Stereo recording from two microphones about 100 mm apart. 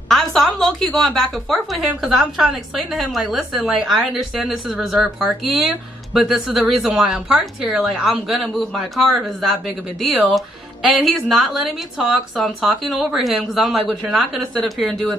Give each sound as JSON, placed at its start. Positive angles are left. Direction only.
{"t": 0.1, "sound": "speech", "side_deg": 0}